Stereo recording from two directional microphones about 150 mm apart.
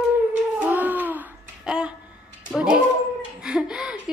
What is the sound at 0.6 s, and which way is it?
Child singing, 10° right (ahead or behind).